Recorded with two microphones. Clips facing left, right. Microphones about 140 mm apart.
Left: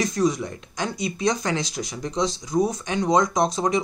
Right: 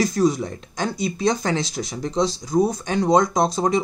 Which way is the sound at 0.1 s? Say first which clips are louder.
Right 3 dB; 30° right (ahead or behind).